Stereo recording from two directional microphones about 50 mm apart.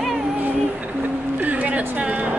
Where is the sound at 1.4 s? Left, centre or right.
Right.